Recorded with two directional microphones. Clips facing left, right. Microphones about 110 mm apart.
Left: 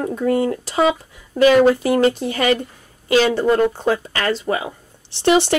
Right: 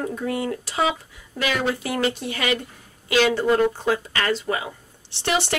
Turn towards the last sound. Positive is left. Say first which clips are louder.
# left 8 dB
turn(degrees=30)  # may be behind; listen again after turning